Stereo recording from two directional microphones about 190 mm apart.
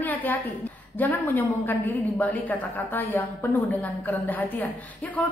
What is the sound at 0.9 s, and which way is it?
A woman's voice, 10° left (ahead or behind).